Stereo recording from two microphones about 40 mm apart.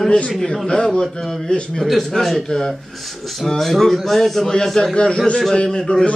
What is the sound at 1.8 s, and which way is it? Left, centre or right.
A man's voice, centre.